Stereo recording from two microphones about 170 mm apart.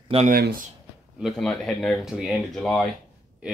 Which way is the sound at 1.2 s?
Centre (ahead or behind).